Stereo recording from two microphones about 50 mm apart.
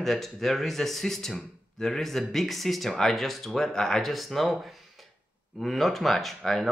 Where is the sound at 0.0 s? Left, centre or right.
Centre.